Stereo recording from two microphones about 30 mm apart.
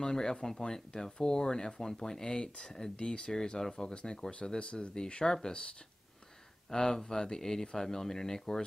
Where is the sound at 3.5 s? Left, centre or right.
Centre.